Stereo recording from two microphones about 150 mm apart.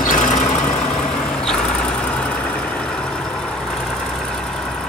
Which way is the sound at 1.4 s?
5° left (ahead or behind).